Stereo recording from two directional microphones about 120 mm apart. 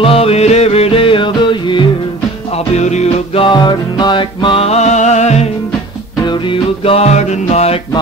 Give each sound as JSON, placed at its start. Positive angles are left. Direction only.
{"t": 0.0, "sound": "music", "side_deg": 55}
{"t": 2.5, "sound": "music", "side_deg": 65}
{"t": 3.3, "sound": "music", "side_deg": 40}
{"t": 6.2, "sound": "music", "side_deg": 45}